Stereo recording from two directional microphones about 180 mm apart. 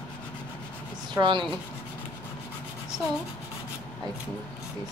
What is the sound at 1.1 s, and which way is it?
Speech, 25° right (ahead or behind).